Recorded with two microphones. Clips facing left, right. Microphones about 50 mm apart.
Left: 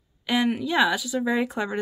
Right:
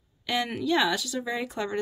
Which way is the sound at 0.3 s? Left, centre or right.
Centre.